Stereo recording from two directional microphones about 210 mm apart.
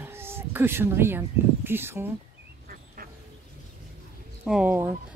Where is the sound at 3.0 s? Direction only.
40° right (ahead or behind).